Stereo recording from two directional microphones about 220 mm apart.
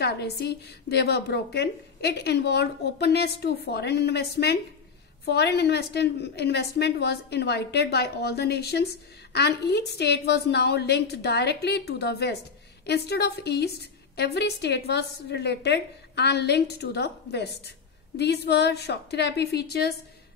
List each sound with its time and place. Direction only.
0.0 s a woman's voice: 45° left (ahead or behind)